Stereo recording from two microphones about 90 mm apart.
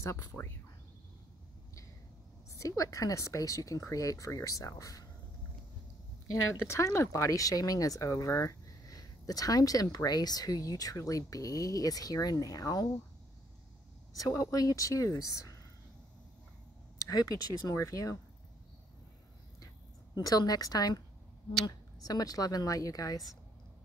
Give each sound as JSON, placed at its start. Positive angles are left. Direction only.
{"t": 0.0, "sound": "speech", "side_deg": 30}
{"t": 2.6, "sound": "speech", "side_deg": 35}
{"t": 6.7, "sound": "speech", "side_deg": 30}
{"t": 14.1, "sound": "speech", "side_deg": 40}
{"t": 17.0, "sound": "speech", "side_deg": 45}
{"t": 20.2, "sound": "speech", "side_deg": 45}